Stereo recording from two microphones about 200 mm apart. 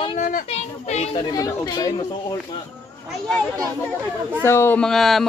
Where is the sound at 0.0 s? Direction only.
40° left (ahead or behind).